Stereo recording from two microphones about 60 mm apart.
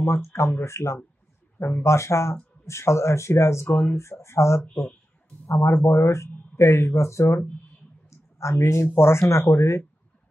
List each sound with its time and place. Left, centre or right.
0.0 s speech: left
8.1 s a sound: left
8.8 s speech: left